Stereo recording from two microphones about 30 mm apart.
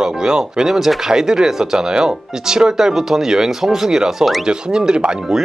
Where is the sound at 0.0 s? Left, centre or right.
Right.